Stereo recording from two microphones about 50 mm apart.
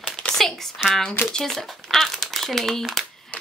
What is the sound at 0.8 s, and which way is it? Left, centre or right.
A child's voice, centre.